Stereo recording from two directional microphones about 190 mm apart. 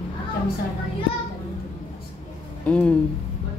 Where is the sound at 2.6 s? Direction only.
5° left (ahead or behind).